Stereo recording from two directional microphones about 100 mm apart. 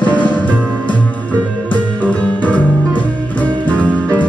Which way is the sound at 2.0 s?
15° left (ahead or behind).